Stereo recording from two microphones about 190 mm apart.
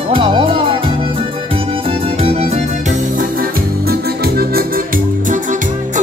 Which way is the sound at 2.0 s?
30° right (ahead or behind).